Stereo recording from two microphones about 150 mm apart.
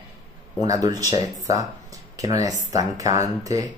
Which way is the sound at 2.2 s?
25° right (ahead or behind).